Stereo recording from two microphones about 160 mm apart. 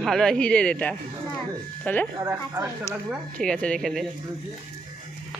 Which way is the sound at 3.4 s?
5° left (ahead or behind).